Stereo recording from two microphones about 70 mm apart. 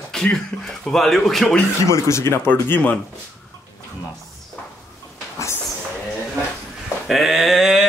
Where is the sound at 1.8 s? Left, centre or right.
Left.